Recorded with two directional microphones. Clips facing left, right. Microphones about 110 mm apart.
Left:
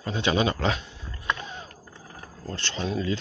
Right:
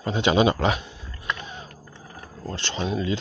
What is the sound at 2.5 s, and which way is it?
Speech, 20° right (ahead or behind).